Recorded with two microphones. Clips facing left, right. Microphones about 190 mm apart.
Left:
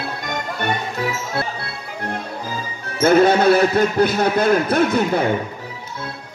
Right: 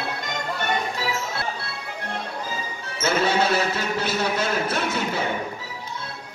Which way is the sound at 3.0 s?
55° left (ahead or behind).